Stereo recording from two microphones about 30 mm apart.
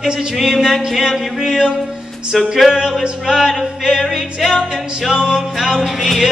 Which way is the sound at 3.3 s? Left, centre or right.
Centre.